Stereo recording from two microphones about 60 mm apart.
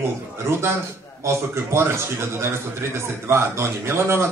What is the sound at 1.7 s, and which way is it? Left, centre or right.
A man's voice, right.